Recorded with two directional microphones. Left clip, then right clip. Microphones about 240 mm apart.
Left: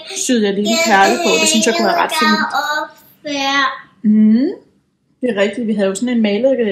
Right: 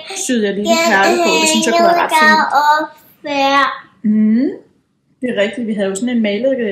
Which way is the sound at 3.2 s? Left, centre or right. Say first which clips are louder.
Right 3 dB; right.